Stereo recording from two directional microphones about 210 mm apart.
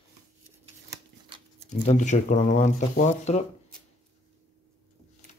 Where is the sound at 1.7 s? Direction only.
35° left (ahead or behind).